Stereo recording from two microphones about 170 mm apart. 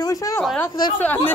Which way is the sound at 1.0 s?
10° left (ahead or behind).